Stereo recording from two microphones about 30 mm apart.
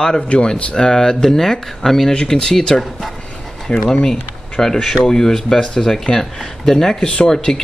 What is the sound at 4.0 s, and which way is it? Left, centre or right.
Speech, centre.